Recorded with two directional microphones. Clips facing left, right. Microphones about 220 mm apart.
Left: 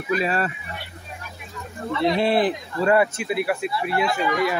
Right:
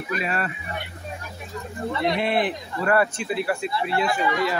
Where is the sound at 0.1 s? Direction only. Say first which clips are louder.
Left 5 dB; 35° left (ahead or behind).